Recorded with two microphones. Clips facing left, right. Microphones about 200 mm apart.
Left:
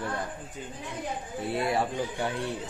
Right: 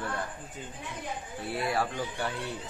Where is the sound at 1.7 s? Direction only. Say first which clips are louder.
Left 3 dB; 20° left (ahead or behind).